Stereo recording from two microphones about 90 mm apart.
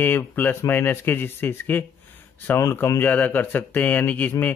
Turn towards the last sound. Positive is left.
turn(degrees=20)  # may be behind; listen again after turning